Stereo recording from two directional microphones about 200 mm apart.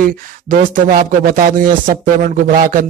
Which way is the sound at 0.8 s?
45° right (ahead or behind).